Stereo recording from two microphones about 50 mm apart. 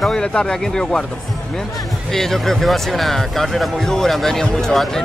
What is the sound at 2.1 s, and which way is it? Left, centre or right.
Speech, centre.